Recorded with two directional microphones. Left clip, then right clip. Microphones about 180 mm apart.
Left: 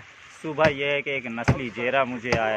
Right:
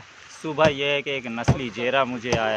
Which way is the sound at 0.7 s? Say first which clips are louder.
Right 1 dB; 10° right (ahead or behind).